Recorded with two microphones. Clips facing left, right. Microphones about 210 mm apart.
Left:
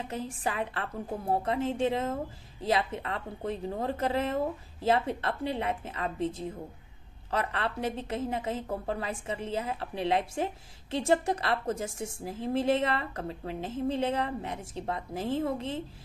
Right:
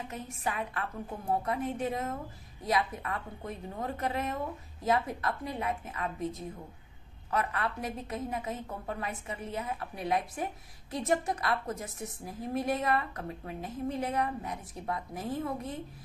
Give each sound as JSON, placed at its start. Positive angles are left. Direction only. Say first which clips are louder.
{"t": 0.1, "sound": "a woman's voice", "louder": "left 4 dB", "side_deg": 30}